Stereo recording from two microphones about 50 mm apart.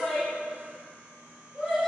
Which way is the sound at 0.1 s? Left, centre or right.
Centre.